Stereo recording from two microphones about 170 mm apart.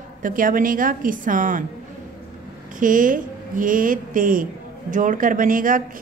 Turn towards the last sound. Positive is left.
turn(degrees=-55)  # may be behind; listen again after turning